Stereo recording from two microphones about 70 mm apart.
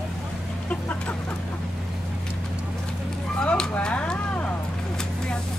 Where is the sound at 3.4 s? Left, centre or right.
Centre.